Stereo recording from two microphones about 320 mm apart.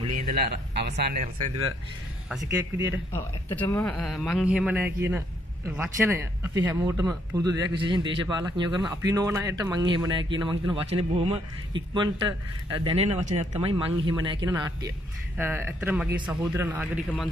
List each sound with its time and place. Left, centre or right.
0.1 s speech: right
0.7 s speech: right
2.2 s speech: centre
3.1 s speech: centre